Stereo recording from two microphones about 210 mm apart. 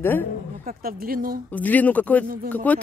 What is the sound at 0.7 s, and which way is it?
Speech, 45° right (ahead or behind).